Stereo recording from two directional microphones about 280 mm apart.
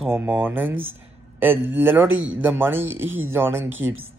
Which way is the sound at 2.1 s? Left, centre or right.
Right.